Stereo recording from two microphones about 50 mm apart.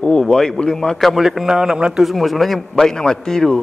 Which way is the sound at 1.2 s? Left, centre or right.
Centre.